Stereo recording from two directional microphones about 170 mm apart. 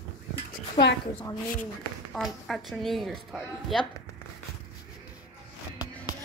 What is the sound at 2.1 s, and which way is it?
Speech, centre (ahead or behind).